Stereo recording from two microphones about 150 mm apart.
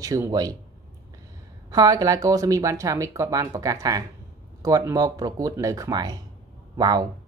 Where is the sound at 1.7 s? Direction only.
25° right (ahead or behind).